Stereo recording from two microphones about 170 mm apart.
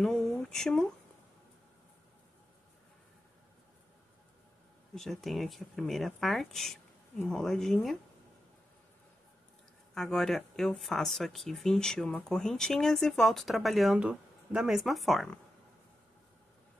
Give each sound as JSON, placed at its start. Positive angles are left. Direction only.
{"t": 0.0, "sound": "speech", "side_deg": 5}
{"t": 4.9, "sound": "speech", "side_deg": 0}
{"t": 9.9, "sound": "speech", "side_deg": 0}